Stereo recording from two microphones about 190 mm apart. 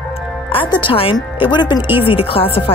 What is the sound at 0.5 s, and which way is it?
Speech, 25° left (ahead or behind).